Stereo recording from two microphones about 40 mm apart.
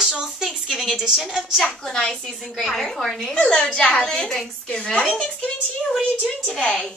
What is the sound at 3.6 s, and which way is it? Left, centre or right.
Speech, left.